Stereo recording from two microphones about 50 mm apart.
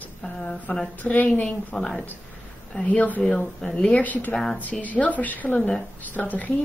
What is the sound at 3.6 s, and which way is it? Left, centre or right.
Speech, centre.